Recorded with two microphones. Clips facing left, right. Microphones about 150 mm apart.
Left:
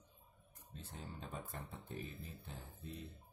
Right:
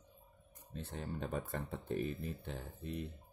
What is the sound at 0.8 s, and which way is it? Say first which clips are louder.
Speech: right 9 dB; 70° right (ahead or behind).